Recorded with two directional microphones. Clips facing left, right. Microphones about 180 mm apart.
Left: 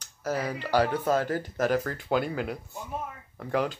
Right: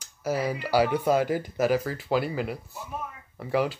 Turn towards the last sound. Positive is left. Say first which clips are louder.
# right 2 dB
turn(degrees=-5)  # may be behind; listen again after turning